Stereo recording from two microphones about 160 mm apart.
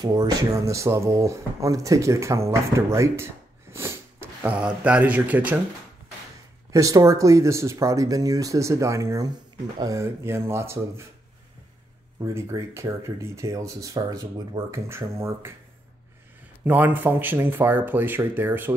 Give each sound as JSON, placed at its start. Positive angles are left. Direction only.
{"t": 0.0, "sound": "speech", "side_deg": -25}
{"t": 6.7, "sound": "speech", "side_deg": -20}
{"t": 12.2, "sound": "speech", "side_deg": -20}
{"t": 16.6, "sound": "speech", "side_deg": -10}